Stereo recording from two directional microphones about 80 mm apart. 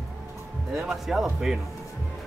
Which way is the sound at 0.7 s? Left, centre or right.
Centre.